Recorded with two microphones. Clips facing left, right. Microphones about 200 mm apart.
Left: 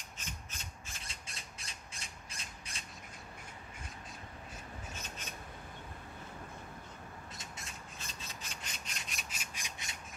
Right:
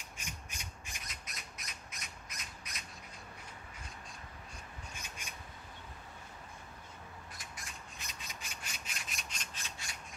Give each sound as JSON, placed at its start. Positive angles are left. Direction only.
{"t": 0.2, "sound": "rub", "side_deg": -15}
{"t": 1.0, "sound": "squawk", "side_deg": 30}
{"t": 4.9, "sound": "a sound", "side_deg": -10}
{"t": 7.3, "sound": "squawk", "side_deg": 25}
{"t": 8.0, "sound": "rub", "side_deg": -15}
{"t": 9.1, "sound": "rub", "side_deg": 5}